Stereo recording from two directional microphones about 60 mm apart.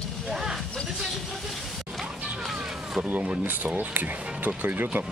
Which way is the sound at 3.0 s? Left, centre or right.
Right.